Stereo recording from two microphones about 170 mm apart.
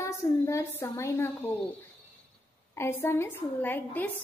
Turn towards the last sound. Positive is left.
turn(degrees=10)  # may be behind; listen again after turning